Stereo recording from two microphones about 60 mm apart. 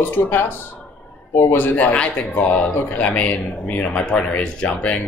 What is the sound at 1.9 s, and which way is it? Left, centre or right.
Speech, left.